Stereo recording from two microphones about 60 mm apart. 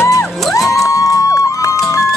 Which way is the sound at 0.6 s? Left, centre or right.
Left.